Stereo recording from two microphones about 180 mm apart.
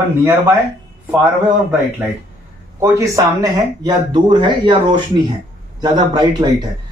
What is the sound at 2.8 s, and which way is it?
Speech, 15° right (ahead or behind).